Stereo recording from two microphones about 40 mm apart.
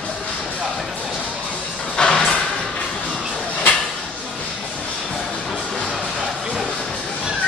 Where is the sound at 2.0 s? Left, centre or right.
Centre.